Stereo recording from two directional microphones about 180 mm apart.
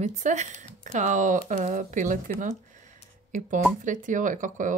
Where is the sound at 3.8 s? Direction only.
45° right (ahead or behind).